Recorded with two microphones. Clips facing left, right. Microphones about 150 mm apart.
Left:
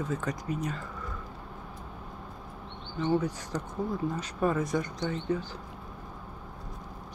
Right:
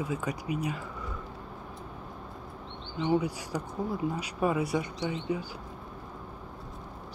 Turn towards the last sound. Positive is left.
turn(degrees=-10)  # may be behind; listen again after turning